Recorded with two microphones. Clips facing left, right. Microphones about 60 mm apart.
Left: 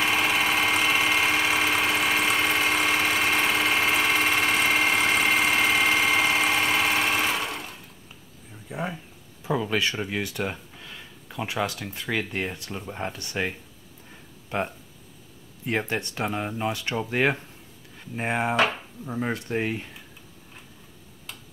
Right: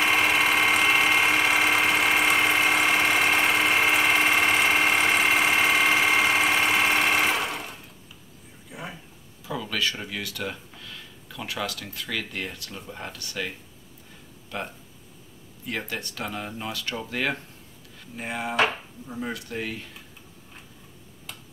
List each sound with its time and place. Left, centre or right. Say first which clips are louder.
0.0 s engine: right 2 dB; centre
8.6 s a sound: left 7 dB; left
9.4 s speech: left 4 dB; left
18.1 s speech: left 3 dB; left